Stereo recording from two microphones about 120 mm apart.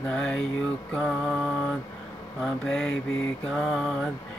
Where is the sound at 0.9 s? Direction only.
5° left (ahead or behind).